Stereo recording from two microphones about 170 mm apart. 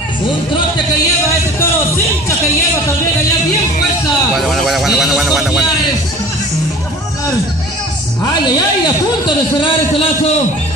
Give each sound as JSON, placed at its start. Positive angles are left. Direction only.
{"t": 4.4, "sound": "a man's voice", "side_deg": 0}
{"t": 9.6, "sound": "a man's voice", "side_deg": 35}